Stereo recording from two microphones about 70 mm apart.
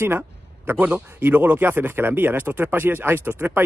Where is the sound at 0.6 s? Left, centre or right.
Right.